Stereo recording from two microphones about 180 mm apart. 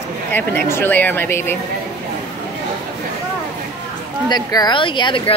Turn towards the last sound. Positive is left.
turn(degrees=25)  # may be behind; listen again after turning